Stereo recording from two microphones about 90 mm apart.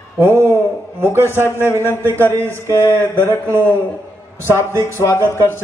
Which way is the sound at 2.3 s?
30° right (ahead or behind).